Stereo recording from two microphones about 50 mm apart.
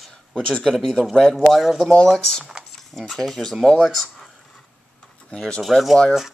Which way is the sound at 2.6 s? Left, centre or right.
Centre.